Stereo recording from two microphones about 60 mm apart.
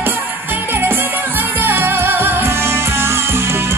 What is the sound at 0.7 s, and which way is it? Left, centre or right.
Music, right.